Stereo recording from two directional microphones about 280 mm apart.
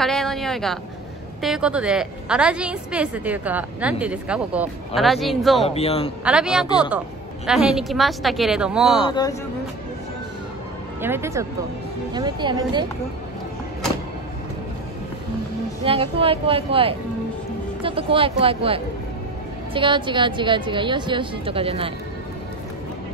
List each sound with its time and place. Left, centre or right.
0.0 s a sound: centre
1.4 s a woman's voice: centre
5.7 s a man's voice: left
6.2 s a woman's voice: centre
9.1 s speech: centre
11.0 s a woman's voice: centre
15.8 s a woman's voice: centre